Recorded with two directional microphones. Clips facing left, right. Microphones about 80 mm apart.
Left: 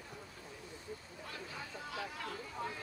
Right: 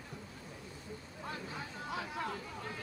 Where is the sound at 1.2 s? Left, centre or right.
Right.